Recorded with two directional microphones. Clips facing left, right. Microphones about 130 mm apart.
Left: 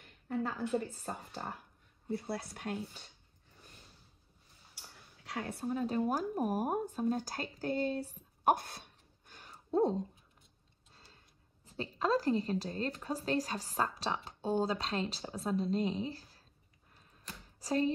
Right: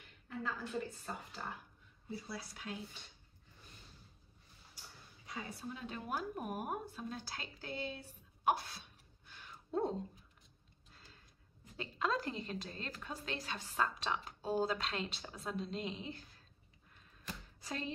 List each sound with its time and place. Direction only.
0.0 s speech: 40° left (ahead or behind)
2.0 s speech: 60° left (ahead or behind)
5.2 s a woman's voice: 70° left (ahead or behind)
5.7 s speech: 40° left (ahead or behind)
10.9 s tick-tock: 30° left (ahead or behind)
11.6 s a woman's voice: 35° left (ahead or behind)
17.6 s speech: 35° left (ahead or behind)